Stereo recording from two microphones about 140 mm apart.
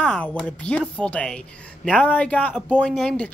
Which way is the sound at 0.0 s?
10° left (ahead or behind).